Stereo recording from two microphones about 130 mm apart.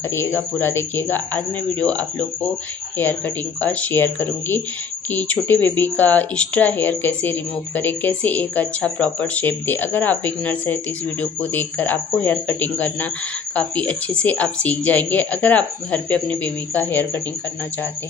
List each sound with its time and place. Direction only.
0.1 s speech: 20° left (ahead or behind)
3.6 s speech: 15° left (ahead or behind)